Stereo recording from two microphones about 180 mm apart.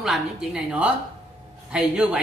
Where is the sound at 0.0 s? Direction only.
5° right (ahead or behind).